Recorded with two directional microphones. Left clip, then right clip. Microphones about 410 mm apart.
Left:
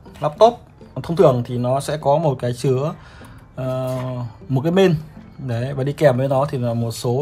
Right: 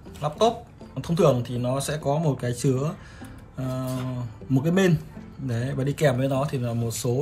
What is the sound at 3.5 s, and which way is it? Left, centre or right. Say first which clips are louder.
Speech: left 8 dB; centre.